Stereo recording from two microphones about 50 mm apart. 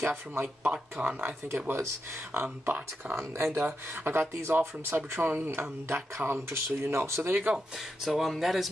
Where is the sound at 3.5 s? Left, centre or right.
Right.